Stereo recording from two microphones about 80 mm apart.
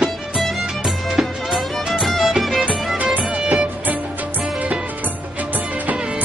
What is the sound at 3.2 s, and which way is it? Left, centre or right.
Music, centre.